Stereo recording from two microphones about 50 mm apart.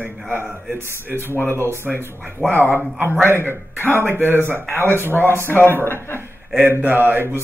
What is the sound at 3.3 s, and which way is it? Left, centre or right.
A man's voice, right.